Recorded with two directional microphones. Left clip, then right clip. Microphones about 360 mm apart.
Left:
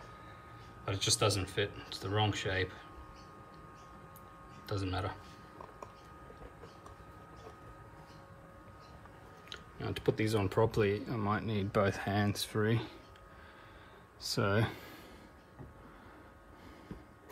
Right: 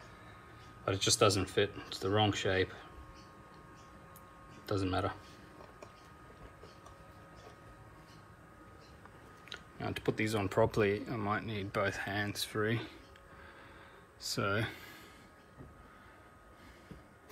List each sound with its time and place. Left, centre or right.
0.8 s speech: centre
4.6 s speech: centre
9.5 s speech: centre
14.2 s speech: centre